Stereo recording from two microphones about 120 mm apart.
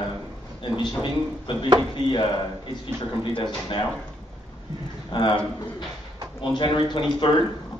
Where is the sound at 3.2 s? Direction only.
45° left (ahead or behind).